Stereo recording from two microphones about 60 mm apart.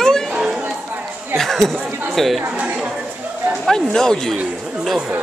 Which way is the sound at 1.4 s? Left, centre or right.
Centre.